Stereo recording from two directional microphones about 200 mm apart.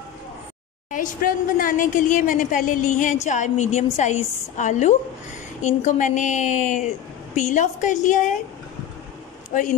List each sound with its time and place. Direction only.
0.9 s a woman's voice: 45° left (ahead or behind)
9.5 s a woman's voice: 40° left (ahead or behind)